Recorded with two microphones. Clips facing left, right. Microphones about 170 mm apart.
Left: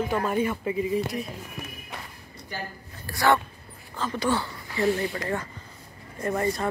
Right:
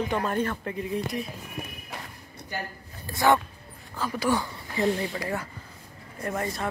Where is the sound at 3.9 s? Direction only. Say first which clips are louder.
Even; 5° right (ahead or behind).